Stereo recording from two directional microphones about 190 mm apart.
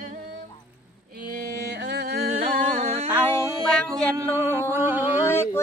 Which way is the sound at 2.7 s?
35° right (ahead or behind).